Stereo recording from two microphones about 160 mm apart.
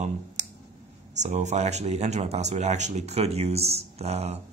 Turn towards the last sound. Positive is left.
turn(degrees=-40)  # may be behind; listen again after turning